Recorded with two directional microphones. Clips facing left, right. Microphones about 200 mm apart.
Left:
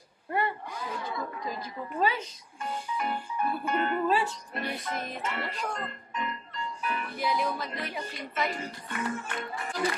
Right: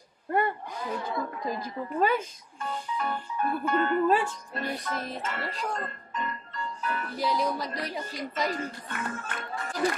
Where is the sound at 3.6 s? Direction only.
15° left (ahead or behind).